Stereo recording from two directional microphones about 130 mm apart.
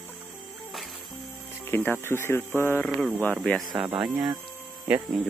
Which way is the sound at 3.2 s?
5° left (ahead or behind).